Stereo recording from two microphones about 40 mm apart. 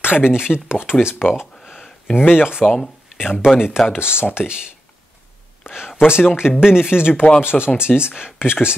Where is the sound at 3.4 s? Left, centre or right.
Centre.